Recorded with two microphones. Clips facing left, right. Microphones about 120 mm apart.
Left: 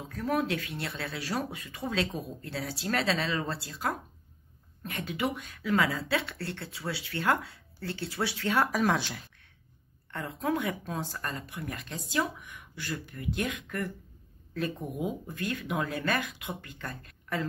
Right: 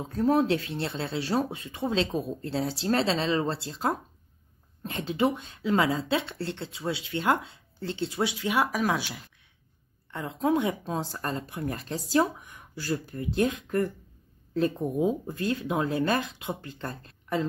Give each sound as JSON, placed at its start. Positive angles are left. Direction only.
{"t": 0.1, "sound": "speech", "side_deg": -30}
{"t": 10.1, "sound": "speech", "side_deg": -20}